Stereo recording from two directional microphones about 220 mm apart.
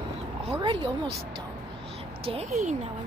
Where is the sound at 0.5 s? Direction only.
20° right (ahead or behind).